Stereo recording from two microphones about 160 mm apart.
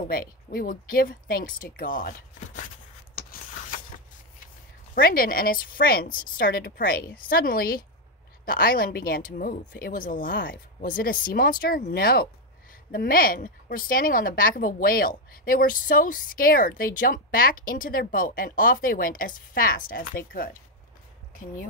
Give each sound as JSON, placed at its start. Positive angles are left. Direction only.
{"t": 0.1, "sound": "a woman's voice", "side_deg": 65}
{"t": 3.2, "sound": "a sound", "side_deg": 65}
{"t": 4.9, "sound": "a woman's voice", "side_deg": 65}